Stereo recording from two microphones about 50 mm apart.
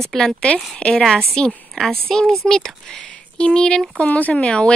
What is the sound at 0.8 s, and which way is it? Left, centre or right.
Speech, left.